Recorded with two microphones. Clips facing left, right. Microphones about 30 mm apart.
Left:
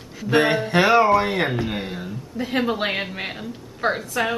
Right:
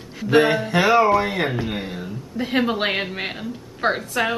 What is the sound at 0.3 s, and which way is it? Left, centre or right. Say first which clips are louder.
Speech: right 2 dB; centre.